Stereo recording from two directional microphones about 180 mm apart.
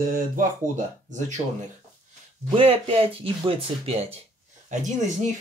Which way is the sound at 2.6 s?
30° right (ahead or behind).